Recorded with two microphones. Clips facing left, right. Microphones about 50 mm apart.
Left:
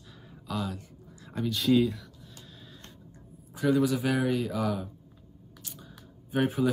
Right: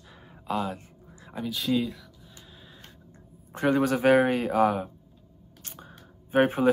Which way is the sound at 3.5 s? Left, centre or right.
Right.